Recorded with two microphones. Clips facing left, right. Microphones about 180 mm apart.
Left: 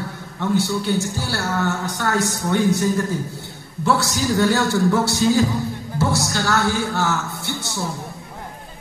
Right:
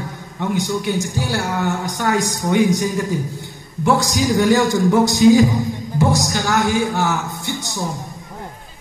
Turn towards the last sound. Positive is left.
turn(degrees=-15)  # may be behind; listen again after turning